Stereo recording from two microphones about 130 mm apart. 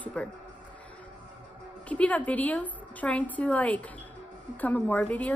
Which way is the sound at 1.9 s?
10° left (ahead or behind).